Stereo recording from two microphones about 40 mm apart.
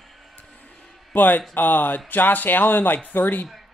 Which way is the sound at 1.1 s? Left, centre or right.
Left.